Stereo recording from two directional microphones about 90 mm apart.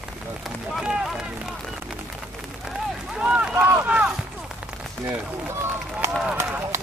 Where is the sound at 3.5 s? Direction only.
25° right (ahead or behind).